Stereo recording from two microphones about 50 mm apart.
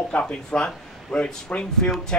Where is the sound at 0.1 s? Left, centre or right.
Left.